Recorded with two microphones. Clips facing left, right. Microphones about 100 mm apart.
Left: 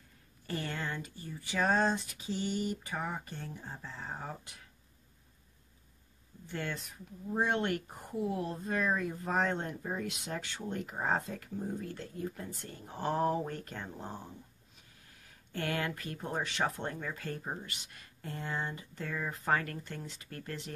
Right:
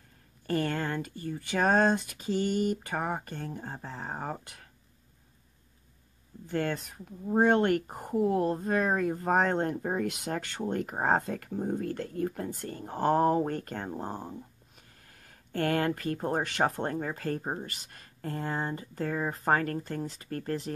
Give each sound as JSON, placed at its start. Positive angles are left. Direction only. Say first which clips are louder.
{"t": 0.5, "sound": "speech", "louder": "right 8 dB", "side_deg": -50}
{"t": 6.5, "sound": "speech", "louder": "right 8 dB", "side_deg": -50}